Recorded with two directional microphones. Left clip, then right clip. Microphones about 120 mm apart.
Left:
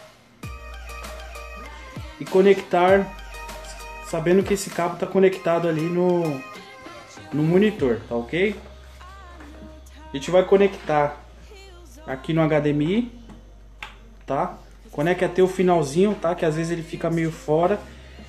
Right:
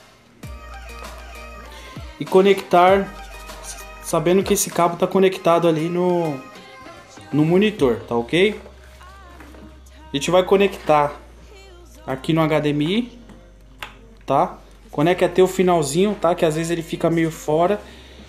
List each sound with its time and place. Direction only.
2.3 s speech: 50° right (ahead or behind)
4.1 s speech: 45° right (ahead or behind)
6.2 s music: centre (ahead or behind)
7.3 s speech: 45° right (ahead or behind); by 8.5 s 65° right (ahead or behind)
10.1 s speech: 60° right (ahead or behind)
12.1 s speech: 50° right (ahead or behind)
14.2 s speech: 45° right (ahead or behind)